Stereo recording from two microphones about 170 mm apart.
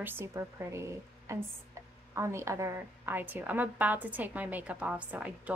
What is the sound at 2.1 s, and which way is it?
A woman's voice, 15° right (ahead or behind).